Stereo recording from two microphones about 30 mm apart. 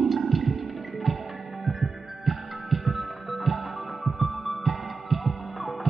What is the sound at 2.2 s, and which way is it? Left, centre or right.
Music, centre.